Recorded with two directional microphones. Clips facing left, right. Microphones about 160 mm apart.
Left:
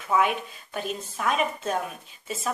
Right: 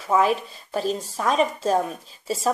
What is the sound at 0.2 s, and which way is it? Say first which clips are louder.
A woman's voice: right 4 dB; 35° right (ahead or behind).